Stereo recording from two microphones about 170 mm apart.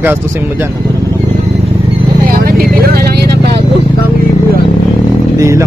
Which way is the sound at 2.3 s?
60° right (ahead or behind).